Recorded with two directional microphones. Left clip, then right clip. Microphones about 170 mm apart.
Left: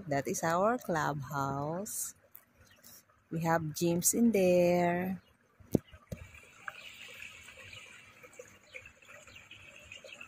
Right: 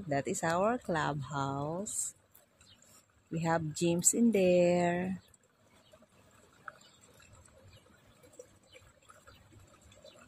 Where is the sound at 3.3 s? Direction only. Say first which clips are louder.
Left 1 dB; centre (ahead or behind).